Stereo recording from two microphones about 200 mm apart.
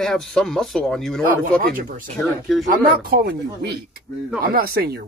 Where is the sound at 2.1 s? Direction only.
Centre (ahead or behind).